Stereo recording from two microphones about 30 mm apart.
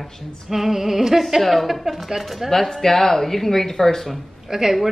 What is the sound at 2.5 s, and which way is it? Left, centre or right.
Speech, centre.